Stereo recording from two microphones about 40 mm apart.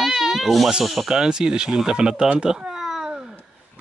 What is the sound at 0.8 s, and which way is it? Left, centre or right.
Speech, centre.